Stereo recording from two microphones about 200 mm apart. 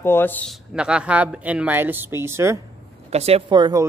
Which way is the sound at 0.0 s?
10° left (ahead or behind).